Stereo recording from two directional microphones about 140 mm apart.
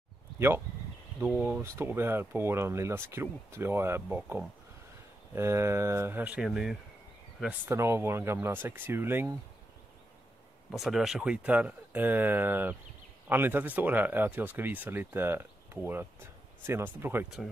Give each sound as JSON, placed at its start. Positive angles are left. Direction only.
{"t": 1.2, "sound": "speech", "side_deg": -10}
{"t": 7.7, "sound": "speech", "side_deg": -20}
{"t": 10.7, "sound": "speech", "side_deg": 0}